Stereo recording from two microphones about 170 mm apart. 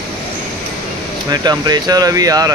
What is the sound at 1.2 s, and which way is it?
Speech, 25° right (ahead or behind).